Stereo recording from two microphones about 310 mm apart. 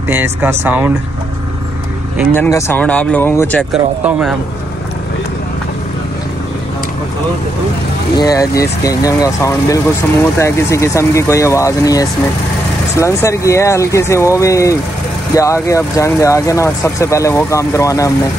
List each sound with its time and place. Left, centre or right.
0.1 s speech: centre
2.1 s speech: centre
8.2 s speech: centre